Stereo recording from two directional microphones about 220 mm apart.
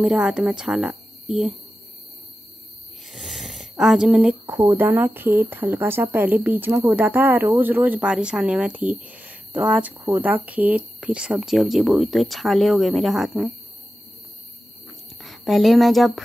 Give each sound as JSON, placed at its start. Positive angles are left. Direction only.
{"t": 0.0, "sound": "speech", "side_deg": -5}
{"t": 3.1, "sound": "speech", "side_deg": 0}
{"t": 15.2, "sound": "speech", "side_deg": 0}